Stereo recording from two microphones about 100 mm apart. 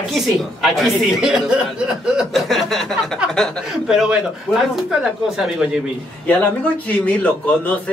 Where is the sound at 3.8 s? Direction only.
5° right (ahead or behind).